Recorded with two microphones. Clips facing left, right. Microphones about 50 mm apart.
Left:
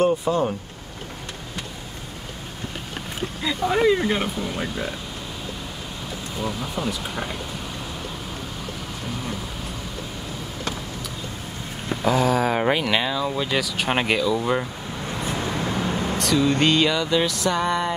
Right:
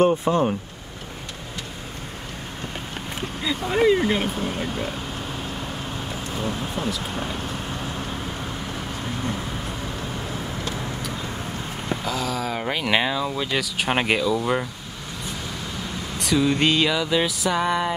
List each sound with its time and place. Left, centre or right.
0.0 s speech: right
3.4 s music: centre
6.4 s speech: right
12.0 s speech: left
12.8 s speech: centre
13.3 s music: centre
15.2 s vehicle: left
16.2 s music: centre